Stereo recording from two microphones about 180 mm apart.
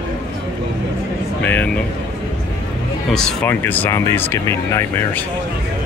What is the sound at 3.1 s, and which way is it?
Speech, 5° left (ahead or behind).